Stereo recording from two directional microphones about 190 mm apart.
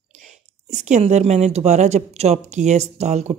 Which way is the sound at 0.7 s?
40° right (ahead or behind).